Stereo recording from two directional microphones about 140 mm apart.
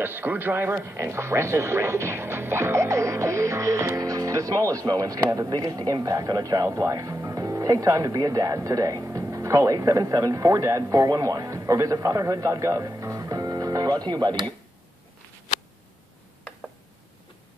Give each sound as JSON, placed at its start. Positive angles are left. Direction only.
{"t": 0.0, "sound": "speech", "side_deg": -15}